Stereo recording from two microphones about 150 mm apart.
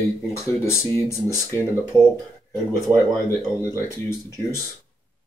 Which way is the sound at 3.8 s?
15° left (ahead or behind).